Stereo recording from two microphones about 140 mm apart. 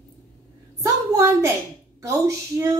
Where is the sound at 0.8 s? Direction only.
20° right (ahead or behind).